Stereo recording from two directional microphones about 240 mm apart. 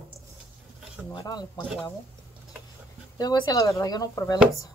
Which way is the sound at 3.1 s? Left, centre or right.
Centre.